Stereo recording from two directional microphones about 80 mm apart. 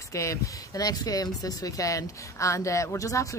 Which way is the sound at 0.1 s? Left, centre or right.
Left.